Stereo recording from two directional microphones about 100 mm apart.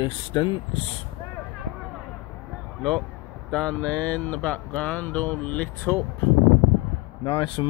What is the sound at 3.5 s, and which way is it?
Speech, 10° left (ahead or behind).